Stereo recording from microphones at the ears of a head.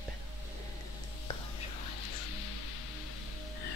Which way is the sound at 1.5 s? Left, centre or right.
Left.